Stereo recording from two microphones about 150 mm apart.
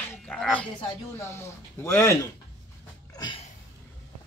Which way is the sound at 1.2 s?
15° left (ahead or behind).